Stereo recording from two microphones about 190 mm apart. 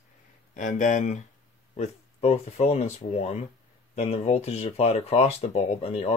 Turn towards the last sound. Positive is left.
turn(degrees=35)  # may be behind; listen again after turning